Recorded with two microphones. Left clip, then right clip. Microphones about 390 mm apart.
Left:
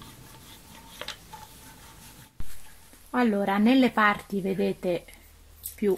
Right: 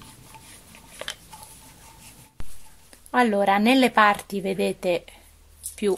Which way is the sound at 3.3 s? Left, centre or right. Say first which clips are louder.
Right 3 dB; right.